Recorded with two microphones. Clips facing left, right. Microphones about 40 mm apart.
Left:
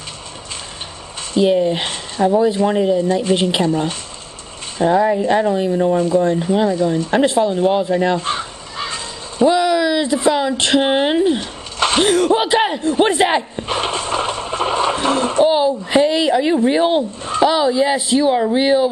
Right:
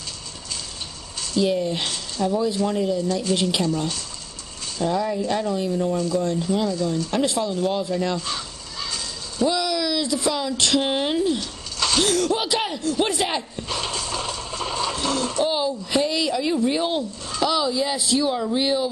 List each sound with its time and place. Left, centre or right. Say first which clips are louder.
1.3 s a woman's voice: left 7 dB; left